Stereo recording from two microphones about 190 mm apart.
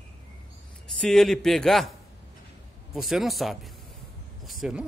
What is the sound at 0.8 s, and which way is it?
A man's voice, centre (ahead or behind).